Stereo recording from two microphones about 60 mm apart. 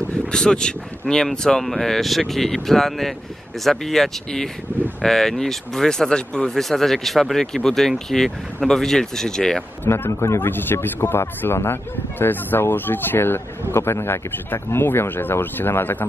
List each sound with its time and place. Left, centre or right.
0.3 s speech: centre
9.8 s a man's voice: left
10.5 s a man's voice: left